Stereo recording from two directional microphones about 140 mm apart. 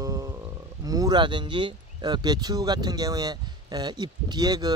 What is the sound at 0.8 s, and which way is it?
Speech, 25° right (ahead or behind).